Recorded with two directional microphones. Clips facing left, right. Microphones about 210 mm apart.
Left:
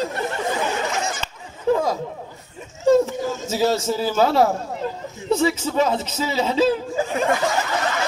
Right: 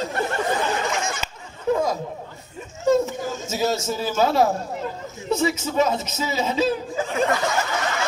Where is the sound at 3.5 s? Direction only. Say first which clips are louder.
Left 3 dB; 30° left (ahead or behind).